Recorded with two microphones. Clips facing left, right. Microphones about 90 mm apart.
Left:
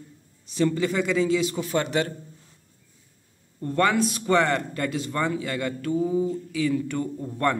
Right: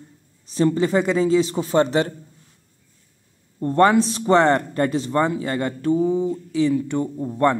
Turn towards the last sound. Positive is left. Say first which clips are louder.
# right 5 dB
turn(degrees=-20)  # may be behind; listen again after turning